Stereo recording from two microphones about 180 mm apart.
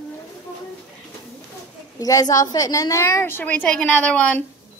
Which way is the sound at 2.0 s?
20° left (ahead or behind).